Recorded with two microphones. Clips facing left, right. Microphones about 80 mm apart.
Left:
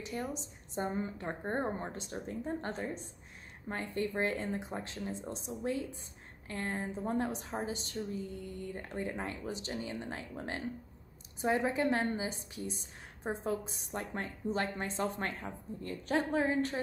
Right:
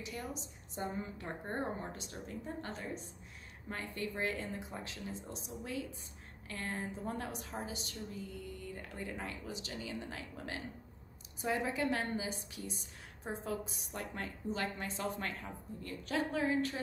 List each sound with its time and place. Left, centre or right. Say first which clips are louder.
0.0 s a woman's voice: left 4 dB; left